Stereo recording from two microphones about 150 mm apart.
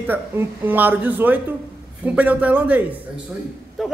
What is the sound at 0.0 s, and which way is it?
A man's voice, 15° right (ahead or behind).